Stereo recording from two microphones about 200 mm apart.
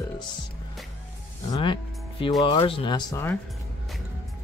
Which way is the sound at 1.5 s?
25° left (ahead or behind).